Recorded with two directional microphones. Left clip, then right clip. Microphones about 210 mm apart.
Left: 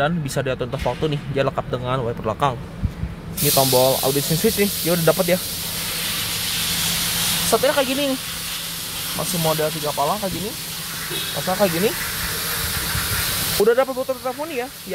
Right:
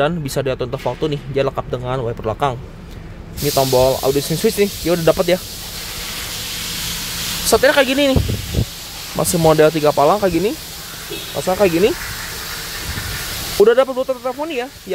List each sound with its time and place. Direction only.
0.0 s speech: 20° right (ahead or behind)
3.5 s speech: 15° right (ahead or behind)
7.5 s speech: 40° right (ahead or behind)
9.2 s speech: 45° right (ahead or behind); by 10.3 s 65° right (ahead or behind)
11.4 s speech: 45° right (ahead or behind)
13.6 s speech: 20° right (ahead or behind)